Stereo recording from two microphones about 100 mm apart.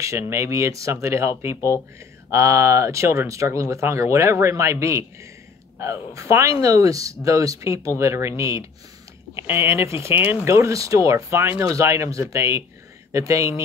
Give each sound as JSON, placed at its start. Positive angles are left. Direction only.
{"t": 0.3, "sound": "speech", "side_deg": -30}
{"t": 2.3, "sound": "speech", "side_deg": -30}
{"t": 10.5, "sound": "speech", "side_deg": -30}